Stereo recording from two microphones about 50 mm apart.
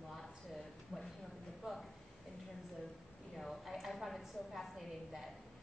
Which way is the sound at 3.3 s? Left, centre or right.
Centre.